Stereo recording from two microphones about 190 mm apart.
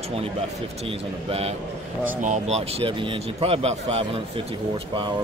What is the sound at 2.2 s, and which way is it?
Speech, 35° right (ahead or behind).